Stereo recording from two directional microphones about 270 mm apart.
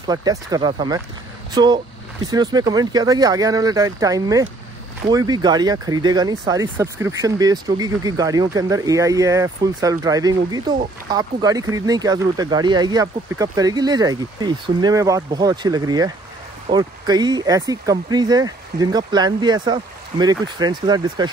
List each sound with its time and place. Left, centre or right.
0.1 s speech: centre